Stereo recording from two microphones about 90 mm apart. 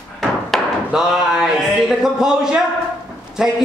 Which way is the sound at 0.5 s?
Centre (ahead or behind).